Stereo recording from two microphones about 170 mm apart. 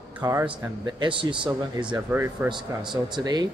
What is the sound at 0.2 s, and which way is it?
Speech, 15° right (ahead or behind).